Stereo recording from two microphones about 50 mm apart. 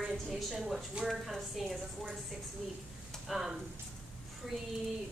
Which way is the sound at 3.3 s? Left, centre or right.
Centre.